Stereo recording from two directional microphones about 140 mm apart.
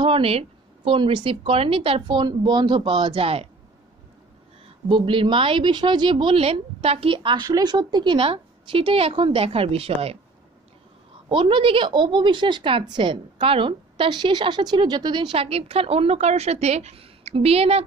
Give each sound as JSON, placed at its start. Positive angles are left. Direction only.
{"t": 0.0, "sound": "a woman's voice", "side_deg": -40}
{"t": 4.8, "sound": "a woman's voice", "side_deg": -35}
{"t": 11.2, "sound": "a woman's voice", "side_deg": -40}